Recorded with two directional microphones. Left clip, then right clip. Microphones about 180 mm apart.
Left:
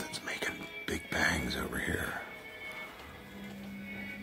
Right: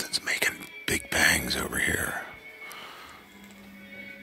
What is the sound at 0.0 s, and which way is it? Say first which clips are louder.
Music: right 9 dB; 15° right (ahead or behind).